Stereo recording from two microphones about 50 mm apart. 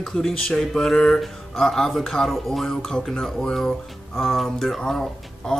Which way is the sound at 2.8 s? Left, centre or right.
Centre.